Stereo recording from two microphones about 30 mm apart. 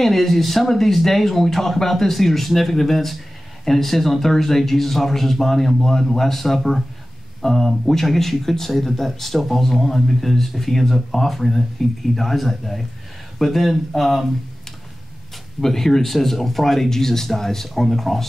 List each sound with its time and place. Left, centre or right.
0.0 s speech: centre
15.6 s speech: centre